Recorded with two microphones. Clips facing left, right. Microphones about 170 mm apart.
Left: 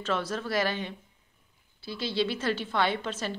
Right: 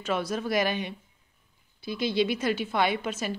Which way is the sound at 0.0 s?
10° right (ahead or behind).